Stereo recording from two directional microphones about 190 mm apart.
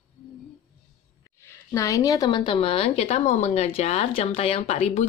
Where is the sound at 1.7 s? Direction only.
15° left (ahead or behind); by 5.0 s 35° left (ahead or behind).